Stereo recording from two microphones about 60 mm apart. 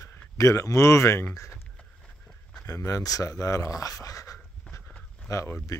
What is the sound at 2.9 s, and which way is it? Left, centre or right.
Speech, left.